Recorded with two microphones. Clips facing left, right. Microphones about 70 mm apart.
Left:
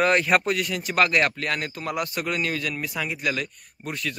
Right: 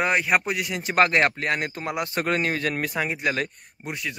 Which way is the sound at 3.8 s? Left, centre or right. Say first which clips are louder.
Left 1 dB; centre.